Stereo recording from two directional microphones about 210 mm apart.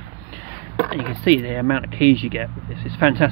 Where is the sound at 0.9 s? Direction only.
10° right (ahead or behind).